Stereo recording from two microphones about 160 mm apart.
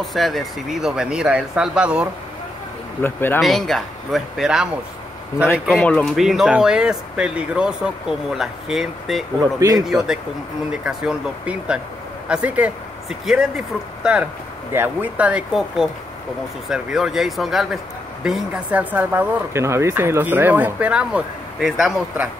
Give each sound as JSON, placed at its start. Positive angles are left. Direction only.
{"t": 0.0, "sound": "speech", "side_deg": 0}
{"t": 3.0, "sound": "speech", "side_deg": 15}
{"t": 3.3, "sound": "speech", "side_deg": 0}
{"t": 5.7, "sound": "speech", "side_deg": 5}
{"t": 9.4, "sound": "speech", "side_deg": -20}
{"t": 10.7, "sound": "speech", "side_deg": -5}